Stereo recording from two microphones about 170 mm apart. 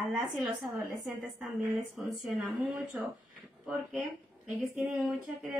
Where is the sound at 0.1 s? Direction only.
Centre (ahead or behind).